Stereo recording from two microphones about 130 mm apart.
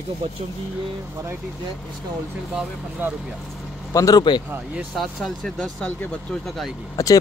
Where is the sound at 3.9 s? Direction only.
30° left (ahead or behind).